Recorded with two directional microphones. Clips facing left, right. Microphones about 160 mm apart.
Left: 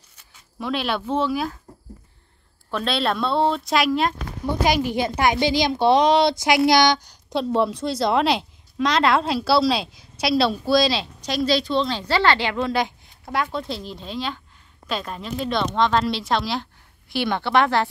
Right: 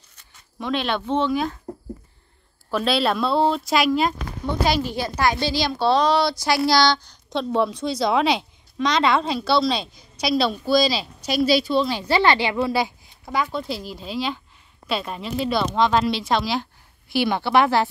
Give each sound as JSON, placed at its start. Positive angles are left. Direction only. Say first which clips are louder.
{"t": 0.2, "sound": "speech", "louder": "even", "side_deg": 5}
{"t": 2.7, "sound": "a woman's voice", "louder": "right 2 dB", "side_deg": -5}
{"t": 4.5, "sound": "a woman's voice", "louder": "left 1 dB", "side_deg": 15}
{"t": 7.3, "sound": "a woman's voice", "louder": "left 1 dB", "side_deg": 0}